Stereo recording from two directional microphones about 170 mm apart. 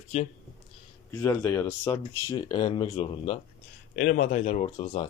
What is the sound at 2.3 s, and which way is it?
Speech, 25° left (ahead or behind).